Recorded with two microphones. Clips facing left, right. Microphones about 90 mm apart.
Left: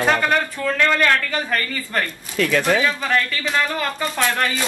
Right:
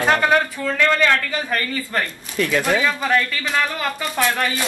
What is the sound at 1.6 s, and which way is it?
Speech, 15° right (ahead or behind).